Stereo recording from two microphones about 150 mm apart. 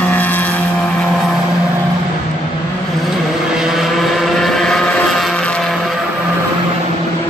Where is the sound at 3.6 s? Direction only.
Centre (ahead or behind).